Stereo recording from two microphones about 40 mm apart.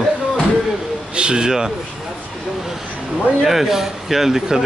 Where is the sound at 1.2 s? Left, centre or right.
Right.